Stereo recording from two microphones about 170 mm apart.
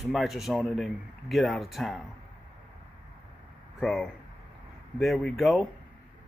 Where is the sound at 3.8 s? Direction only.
5° left (ahead or behind).